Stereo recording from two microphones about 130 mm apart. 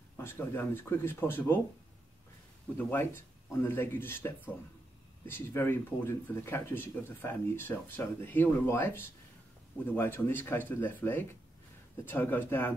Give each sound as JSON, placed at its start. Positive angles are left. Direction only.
{"t": 0.2, "sound": "speech", "side_deg": 15}
{"t": 2.8, "sound": "speech", "side_deg": 15}
{"t": 5.3, "sound": "speech", "side_deg": 20}